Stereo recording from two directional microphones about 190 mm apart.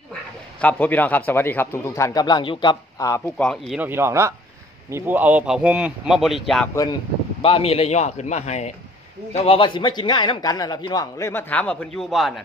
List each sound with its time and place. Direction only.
0.6 s a man's voice: 10° left (ahead or behind)
3.3 s a man's voice: centre (ahead or behind)
6.7 s a man's voice: 20° left (ahead or behind)
7.4 s a man's voice: 30° left (ahead or behind); by 12.4 s centre (ahead or behind)